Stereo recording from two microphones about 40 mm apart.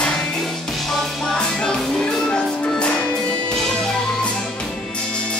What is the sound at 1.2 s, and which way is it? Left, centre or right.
Music, centre.